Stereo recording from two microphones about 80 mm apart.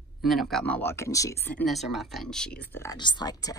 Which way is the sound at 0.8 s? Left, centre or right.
Left.